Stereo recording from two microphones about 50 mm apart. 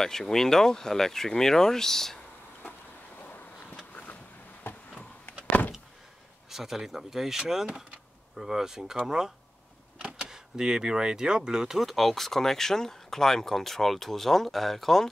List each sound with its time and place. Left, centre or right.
0.0 s speech: centre
3.2 s vehicle: left
4.7 s a sound: left
5.2 s vehicle: left
6.5 s speech: centre